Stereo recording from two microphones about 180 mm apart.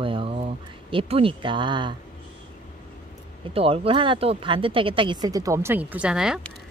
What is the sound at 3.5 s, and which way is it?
Speech, 30° right (ahead or behind).